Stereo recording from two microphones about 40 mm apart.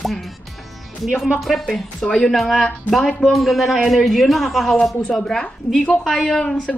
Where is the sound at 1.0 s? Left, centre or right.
Centre.